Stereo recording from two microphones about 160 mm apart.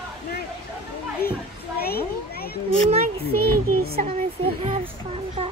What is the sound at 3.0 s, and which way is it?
Child singing, 70° right (ahead or behind).